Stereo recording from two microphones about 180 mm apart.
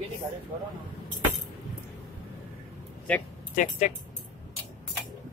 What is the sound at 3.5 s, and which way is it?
Speech, 40° left (ahead or behind).